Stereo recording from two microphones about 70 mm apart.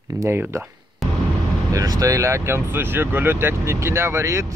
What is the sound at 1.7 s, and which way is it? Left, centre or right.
Speech, right.